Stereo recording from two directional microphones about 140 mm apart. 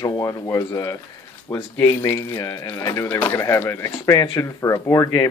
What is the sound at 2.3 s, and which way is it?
Speech, 30° left (ahead or behind).